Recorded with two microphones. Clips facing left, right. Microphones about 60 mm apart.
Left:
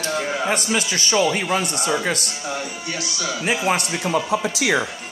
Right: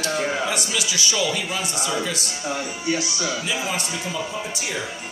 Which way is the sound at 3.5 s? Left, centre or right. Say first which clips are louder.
Left 5 dB; left.